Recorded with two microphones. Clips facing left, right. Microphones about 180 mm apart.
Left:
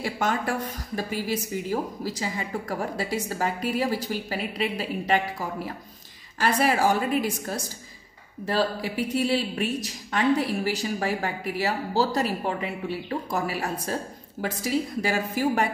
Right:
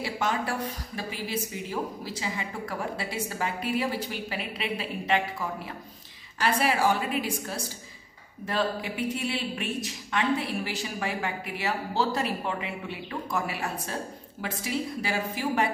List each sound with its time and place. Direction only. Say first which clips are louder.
0.0 s a woman's voice: left 2 dB; 50° left (ahead or behind)